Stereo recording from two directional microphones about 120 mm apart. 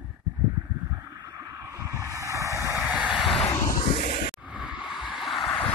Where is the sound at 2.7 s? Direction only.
Centre (ahead or behind).